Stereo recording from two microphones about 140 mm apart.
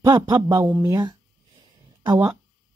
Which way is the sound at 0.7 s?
20° right (ahead or behind).